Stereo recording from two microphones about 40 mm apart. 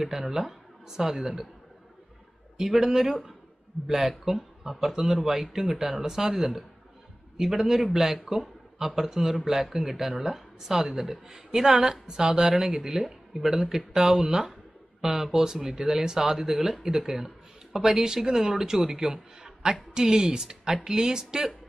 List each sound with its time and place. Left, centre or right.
0.0 s speech: centre
2.5 s a man's voice: centre
7.3 s speech: centre
13.5 s a woman's voice: centre